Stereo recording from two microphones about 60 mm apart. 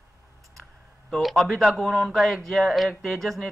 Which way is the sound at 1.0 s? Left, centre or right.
Centre.